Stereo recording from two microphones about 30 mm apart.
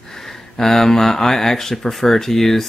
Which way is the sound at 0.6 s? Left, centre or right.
Centre.